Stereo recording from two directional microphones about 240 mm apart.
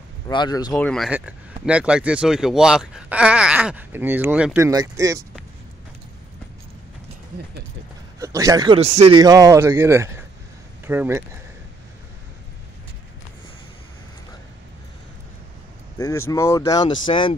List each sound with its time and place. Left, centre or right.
0.3 s speech: centre
0.7 s speech: centre
8.2 s speech: centre
16.0 s speech: centre